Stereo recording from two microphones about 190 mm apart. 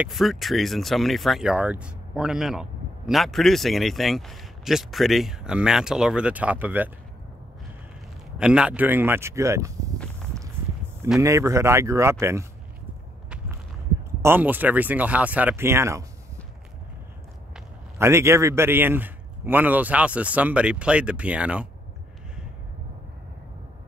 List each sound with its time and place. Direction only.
0.0 s speech: centre (ahead or behind)
8.4 s a man's voice: 5° right (ahead or behind)
11.1 s a man's voice: 15° right (ahead or behind)
14.2 s a man's voice: 10° right (ahead or behind)
17.9 s a man's voice: 15° right (ahead or behind)